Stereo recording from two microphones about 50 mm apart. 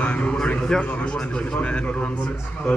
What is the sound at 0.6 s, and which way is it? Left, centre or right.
Speech, centre.